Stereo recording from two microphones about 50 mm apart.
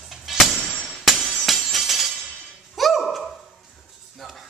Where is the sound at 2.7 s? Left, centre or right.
Centre.